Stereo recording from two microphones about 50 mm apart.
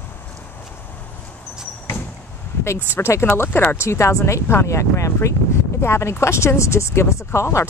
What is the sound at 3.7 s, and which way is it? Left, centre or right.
Speech, left.